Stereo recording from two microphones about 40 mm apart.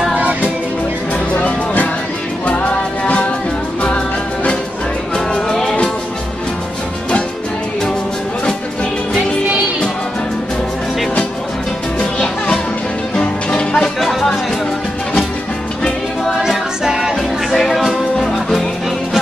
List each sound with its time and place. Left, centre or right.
0.2 s music: right
2.4 s music: left
5.1 s music: centre
12.0 s music: left
14.0 s music: centre
16.4 s music: centre
17.6 s music: centre